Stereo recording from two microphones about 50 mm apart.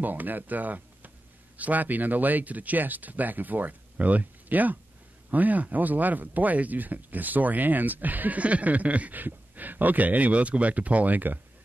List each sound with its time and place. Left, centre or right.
0.0 s speech: right